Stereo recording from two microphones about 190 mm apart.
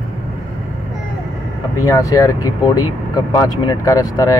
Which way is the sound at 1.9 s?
15° left (ahead or behind).